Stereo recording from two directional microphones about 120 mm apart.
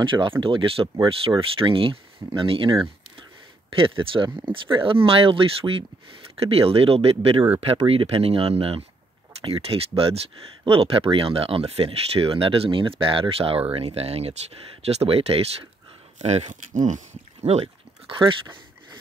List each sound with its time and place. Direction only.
0.0 s speech: 45° right (ahead or behind)
16.2 s speech: 65° right (ahead or behind)